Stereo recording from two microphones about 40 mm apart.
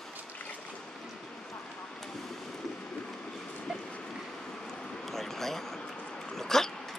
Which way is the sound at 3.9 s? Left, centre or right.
Centre.